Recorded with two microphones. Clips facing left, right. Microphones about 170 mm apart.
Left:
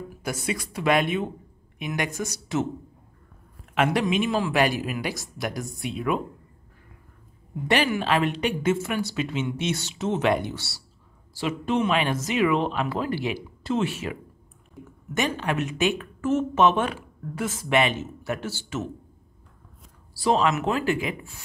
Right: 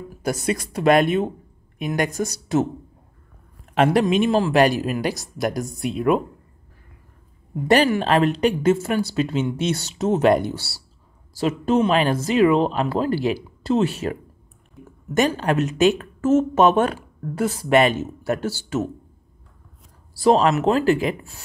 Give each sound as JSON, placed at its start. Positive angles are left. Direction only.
{"t": 0.2, "sound": "a woman's voice", "side_deg": -40}
{"t": 3.7, "sound": "a woman's voice", "side_deg": -35}
{"t": 7.6, "sound": "a woman's voice", "side_deg": -40}
{"t": 20.2, "sound": "a woman's voice", "side_deg": -35}